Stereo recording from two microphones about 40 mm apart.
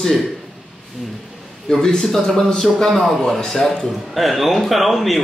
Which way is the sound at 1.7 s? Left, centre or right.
Centre.